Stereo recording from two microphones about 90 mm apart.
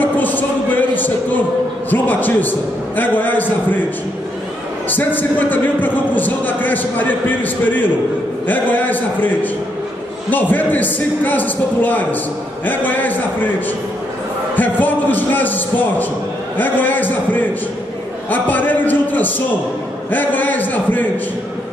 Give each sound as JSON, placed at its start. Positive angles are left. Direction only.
{"t": 0.0, "sound": "a sound", "side_deg": 20}
{"t": 1.9, "sound": "a man's voice", "side_deg": 20}
{"t": 4.8, "sound": "a man's voice", "side_deg": 20}
{"t": 14.5, "sound": "a man's voice", "side_deg": 20}